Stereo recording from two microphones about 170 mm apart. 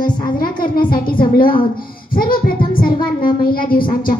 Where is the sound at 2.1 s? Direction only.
55° left (ahead or behind).